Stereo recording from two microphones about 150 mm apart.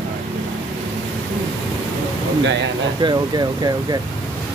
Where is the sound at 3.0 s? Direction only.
30° right (ahead or behind).